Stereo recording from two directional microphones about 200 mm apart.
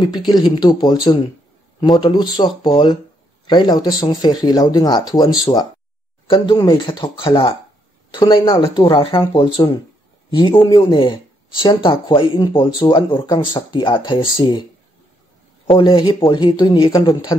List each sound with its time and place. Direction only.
0.0 s speech: 20° left (ahead or behind)